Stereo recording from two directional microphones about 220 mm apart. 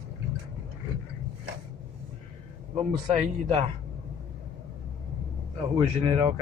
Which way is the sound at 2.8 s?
20° right (ahead or behind).